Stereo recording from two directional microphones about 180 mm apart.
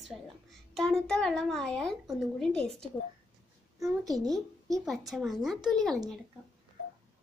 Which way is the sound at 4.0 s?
20° right (ahead or behind).